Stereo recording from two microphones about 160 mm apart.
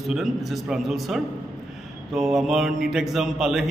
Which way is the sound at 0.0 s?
Centre (ahead or behind).